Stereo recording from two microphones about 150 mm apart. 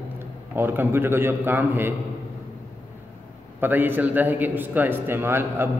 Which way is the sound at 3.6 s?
15° right (ahead or behind).